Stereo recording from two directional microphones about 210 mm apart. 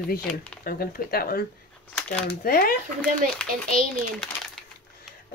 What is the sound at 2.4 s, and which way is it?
Speech, 45° left (ahead or behind).